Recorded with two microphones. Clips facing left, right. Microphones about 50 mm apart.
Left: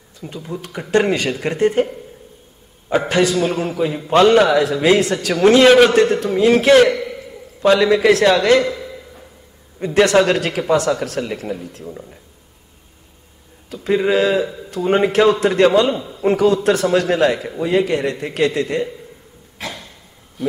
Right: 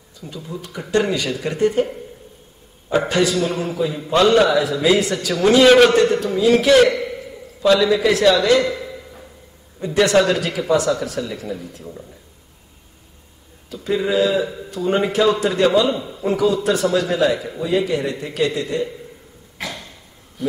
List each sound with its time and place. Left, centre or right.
0.2 s a man's voice: left
3.1 s a man's voice: left
3.4 s speech: left
3.7 s a man's voice: left
4.2 s speech: left
4.5 s a man's voice: left
6.9 s a man's voice: centre
7.6 s a man's voice: left
8.7 s a sound: centre
9.8 s a man's voice: left
11.8 s speech: left
13.7 s a man's voice: left